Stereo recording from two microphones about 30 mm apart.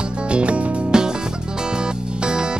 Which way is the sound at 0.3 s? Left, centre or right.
Right.